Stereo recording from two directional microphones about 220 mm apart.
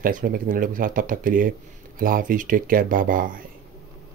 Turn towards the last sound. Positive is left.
turn(degrees=-40)  # may be behind; listen again after turning